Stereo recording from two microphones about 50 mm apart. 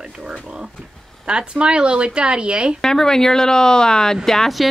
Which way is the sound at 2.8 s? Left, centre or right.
Centre.